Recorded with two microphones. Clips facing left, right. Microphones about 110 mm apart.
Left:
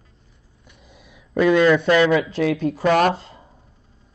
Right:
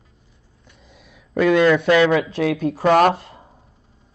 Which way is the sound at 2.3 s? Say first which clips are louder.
Even; 55° right (ahead or behind).